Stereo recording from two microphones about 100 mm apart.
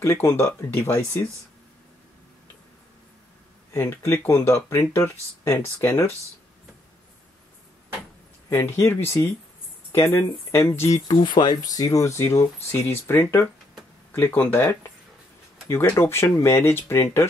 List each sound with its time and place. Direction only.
0.0 s speech: 30° left (ahead or behind)
3.7 s speech: 25° left (ahead or behind)
8.5 s speech: 25° left (ahead or behind)
11.1 s speech: 45° left (ahead or behind); by 17.3 s 25° left (ahead or behind)